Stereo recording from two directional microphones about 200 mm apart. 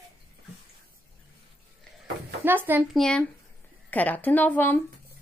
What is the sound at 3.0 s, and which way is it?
A woman's voice, 5° left (ahead or behind).